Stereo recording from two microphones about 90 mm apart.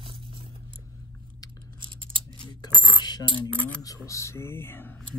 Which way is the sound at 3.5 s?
15° left (ahead or behind).